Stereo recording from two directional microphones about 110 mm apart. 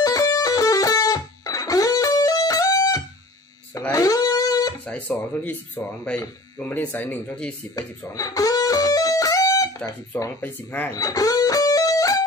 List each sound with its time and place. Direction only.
0.0 s music: 30° left (ahead or behind)
3.9 s a sound: 30° left (ahead or behind)
4.8 s speech: 15° left (ahead or behind)
8.1 s music: 30° left (ahead or behind)
10.4 s speech: 15° left (ahead or behind)
11.0 s music: 30° left (ahead or behind)